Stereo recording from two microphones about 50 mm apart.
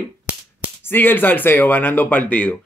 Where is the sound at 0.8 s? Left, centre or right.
Left.